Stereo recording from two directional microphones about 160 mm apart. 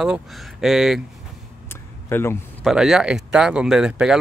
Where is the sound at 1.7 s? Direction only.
15° left (ahead or behind).